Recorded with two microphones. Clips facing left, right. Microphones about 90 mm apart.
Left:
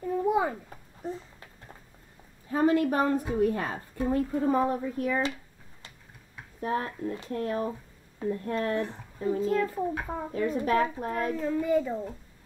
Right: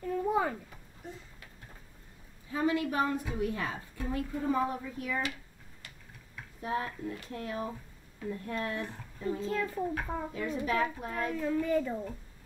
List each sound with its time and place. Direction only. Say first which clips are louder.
0.0 s a sound: left 4 dB; 20° left (ahead or behind)
2.5 s a woman's voice: left 6 dB; 45° left (ahead or behind)
6.6 s a woman's voice: left 4 dB; 40° left (ahead or behind)
9.4 s a child's voice: left 6 dB; 5° left (ahead or behind)
10.4 s a woman's voice: left 6 dB; 40° left (ahead or behind)
11.4 s a child's voice: left 3 dB; 10° left (ahead or behind)